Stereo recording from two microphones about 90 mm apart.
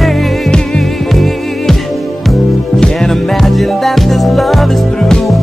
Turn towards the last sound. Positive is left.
turn(degrees=0)  # may be behind; listen again after turning